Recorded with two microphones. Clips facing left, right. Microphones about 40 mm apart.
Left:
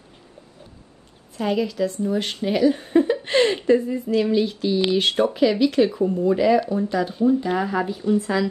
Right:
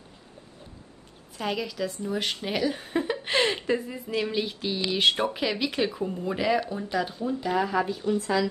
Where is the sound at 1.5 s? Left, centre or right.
Centre.